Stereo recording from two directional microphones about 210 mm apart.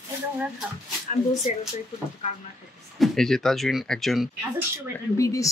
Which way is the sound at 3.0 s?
Centre (ahead or behind).